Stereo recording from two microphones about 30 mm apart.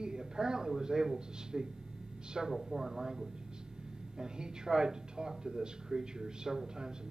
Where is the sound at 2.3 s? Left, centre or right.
Centre.